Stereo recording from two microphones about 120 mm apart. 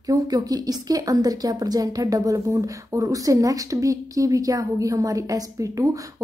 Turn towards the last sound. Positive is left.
turn(degrees=-30)  # may be behind; listen again after turning